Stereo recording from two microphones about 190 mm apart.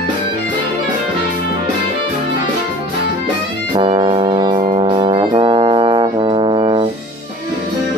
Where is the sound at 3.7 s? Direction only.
25° right (ahead or behind).